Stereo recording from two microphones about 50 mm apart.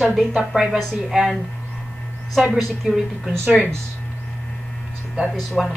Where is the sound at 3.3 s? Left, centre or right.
Centre.